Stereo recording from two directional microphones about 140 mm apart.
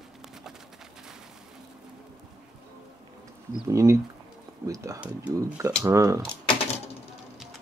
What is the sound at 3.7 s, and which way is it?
Speech, 20° right (ahead or behind).